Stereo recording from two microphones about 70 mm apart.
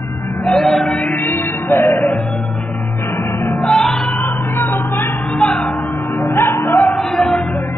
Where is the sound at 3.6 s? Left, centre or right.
Centre.